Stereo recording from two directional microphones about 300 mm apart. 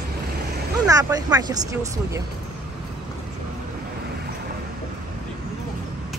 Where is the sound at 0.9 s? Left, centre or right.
Centre.